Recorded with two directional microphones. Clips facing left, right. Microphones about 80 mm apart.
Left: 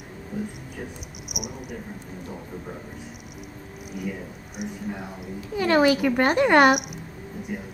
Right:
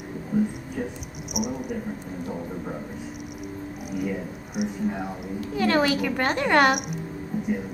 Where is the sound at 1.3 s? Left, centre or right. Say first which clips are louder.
Right 8 dB; centre.